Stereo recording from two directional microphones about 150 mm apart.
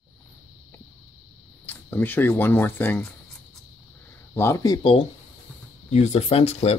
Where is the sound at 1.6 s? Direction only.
10° left (ahead or behind).